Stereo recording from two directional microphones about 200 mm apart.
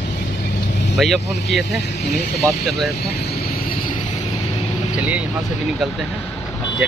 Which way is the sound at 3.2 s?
50° left (ahead or behind).